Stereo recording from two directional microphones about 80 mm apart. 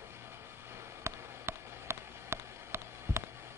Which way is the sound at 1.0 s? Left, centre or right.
Right.